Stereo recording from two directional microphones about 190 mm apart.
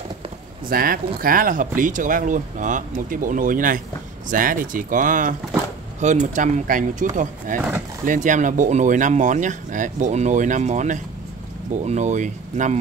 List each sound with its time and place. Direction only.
0.7 s speech: 50° right (ahead or behind)